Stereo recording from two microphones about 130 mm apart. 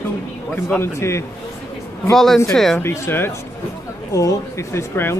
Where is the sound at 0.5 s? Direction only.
15° left (ahead or behind).